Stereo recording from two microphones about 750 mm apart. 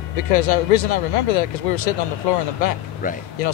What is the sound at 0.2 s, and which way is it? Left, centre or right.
Speech, left.